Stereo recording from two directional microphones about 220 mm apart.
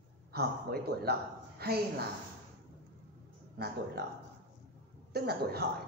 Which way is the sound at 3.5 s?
45° right (ahead or behind).